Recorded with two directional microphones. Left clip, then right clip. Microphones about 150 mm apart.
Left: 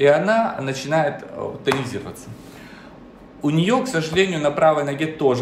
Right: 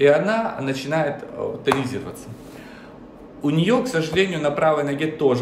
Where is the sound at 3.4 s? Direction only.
10° right (ahead or behind).